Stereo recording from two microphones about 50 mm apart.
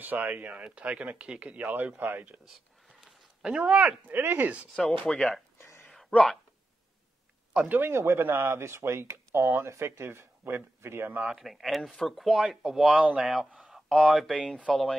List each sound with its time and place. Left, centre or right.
0.0 s speech: right
3.5 s speech: right
4.7 s speech: centre
5.9 s a sound: centre
7.6 s speech: right
7.9 s speech: right
9.4 s speech: right
9.7 s speech: right
11.2 s speech: centre
12.6 s speech: centre
12.9 s speech: right
13.2 s speech: centre
13.8 s speech: centre